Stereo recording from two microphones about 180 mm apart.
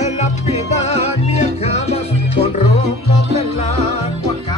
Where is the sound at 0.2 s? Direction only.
35° left (ahead or behind).